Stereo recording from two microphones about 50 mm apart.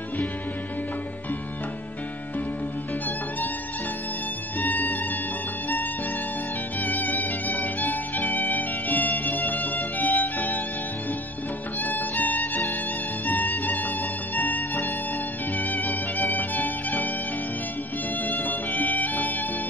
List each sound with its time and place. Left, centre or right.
4.6 s music: left
6.8 s music: left
11.8 s music: left
18.2 s music: left